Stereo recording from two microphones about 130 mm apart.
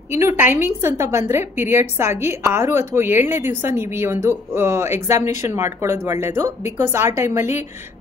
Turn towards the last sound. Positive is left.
turn(degrees=-20)  # may be behind; listen again after turning